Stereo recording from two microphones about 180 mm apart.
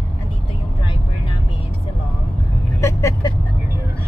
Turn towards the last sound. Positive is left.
turn(degrees=20)  # may be behind; listen again after turning